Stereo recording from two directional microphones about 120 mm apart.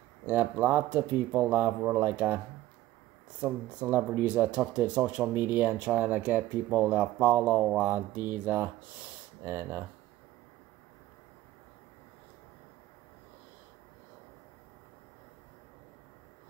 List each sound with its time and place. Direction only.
0.3 s speech: 15° right (ahead or behind)